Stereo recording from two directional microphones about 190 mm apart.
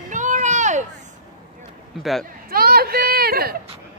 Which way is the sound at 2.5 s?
55° right (ahead or behind).